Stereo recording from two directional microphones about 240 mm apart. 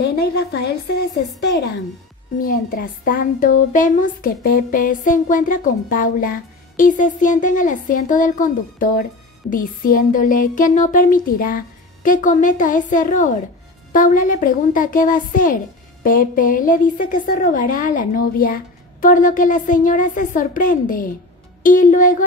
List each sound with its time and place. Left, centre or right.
0.2 s a woman's voice: left
2.4 s speech: left